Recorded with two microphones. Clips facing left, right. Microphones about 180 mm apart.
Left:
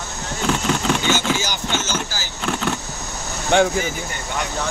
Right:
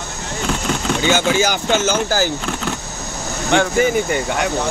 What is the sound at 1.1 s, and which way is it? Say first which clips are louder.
Speech: right 6 dB; 55° right (ahead or behind).